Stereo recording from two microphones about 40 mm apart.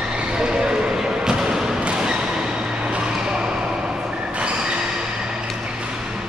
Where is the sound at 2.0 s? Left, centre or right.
Centre.